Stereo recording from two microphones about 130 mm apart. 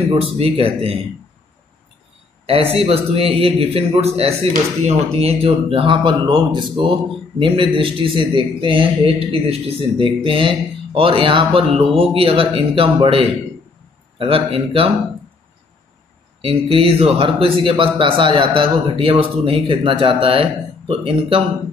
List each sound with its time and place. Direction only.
0.1 s speech: 50° right (ahead or behind)
2.4 s speech: 50° right (ahead or behind)
16.3 s speech: 45° right (ahead or behind)